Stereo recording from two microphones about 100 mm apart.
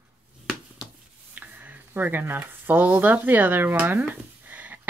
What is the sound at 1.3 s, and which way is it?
Speech, 20° right (ahead or behind).